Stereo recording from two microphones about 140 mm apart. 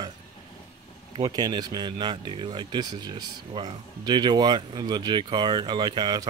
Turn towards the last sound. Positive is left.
turn(degrees=-30)  # may be behind; listen again after turning